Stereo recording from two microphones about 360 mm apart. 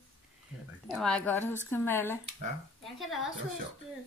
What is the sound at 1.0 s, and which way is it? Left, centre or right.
A woman's voice, centre.